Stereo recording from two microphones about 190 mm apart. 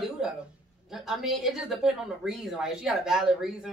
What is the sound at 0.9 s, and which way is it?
A woman's voice, centre (ahead or behind).